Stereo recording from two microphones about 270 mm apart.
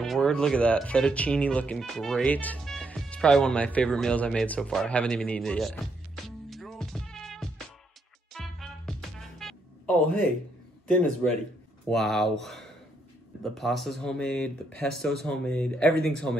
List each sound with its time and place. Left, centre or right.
0.0 s speech: centre
8.3 s music: centre
9.4 s a sound: centre
11.9 s speech: centre